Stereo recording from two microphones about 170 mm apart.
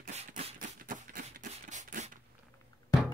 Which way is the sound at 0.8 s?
50° right (ahead or behind).